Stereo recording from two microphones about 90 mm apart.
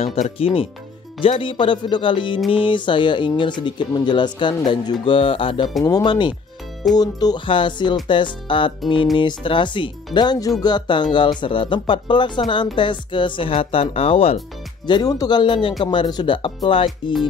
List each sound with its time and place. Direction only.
1.2 s speech: 75° left (ahead or behind); by 4.9 s 55° left (ahead or behind)
5.0 s music: 75° left (ahead or behind)
5.9 s speech: 45° left (ahead or behind)
7.4 s speech: 65° left (ahead or behind); by 14.3 s 90° left
14.9 s speech: 45° left (ahead or behind)
16.4 s music: 85° left